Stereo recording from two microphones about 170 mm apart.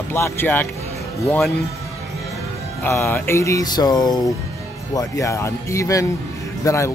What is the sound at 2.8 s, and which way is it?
Speech, 15° left (ahead or behind).